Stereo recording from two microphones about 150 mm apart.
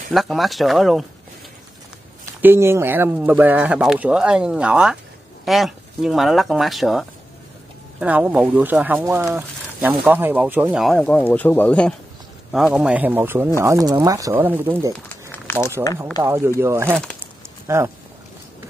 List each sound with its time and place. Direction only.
0.1 s speech: centre (ahead or behind)
2.4 s speech: 15° right (ahead or behind)
10.8 s speech: centre (ahead or behind)
12.5 s speech: 5° right (ahead or behind)
15.4 s a sound: 15° left (ahead or behind)
16.3 s speech: 15° right (ahead or behind)
17.2 s a sound: 20° right (ahead or behind)